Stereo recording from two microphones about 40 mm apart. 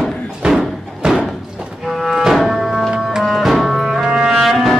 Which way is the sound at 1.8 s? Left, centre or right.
Centre.